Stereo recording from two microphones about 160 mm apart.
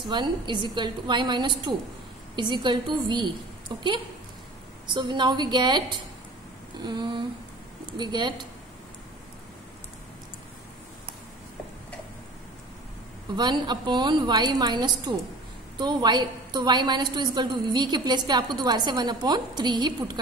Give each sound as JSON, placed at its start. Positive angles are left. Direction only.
{"t": 0.0, "sound": "a woman's voice", "side_deg": -30}
{"t": 4.8, "sound": "a woman's voice", "side_deg": -30}
{"t": 13.4, "sound": "a woman's voice", "side_deg": -25}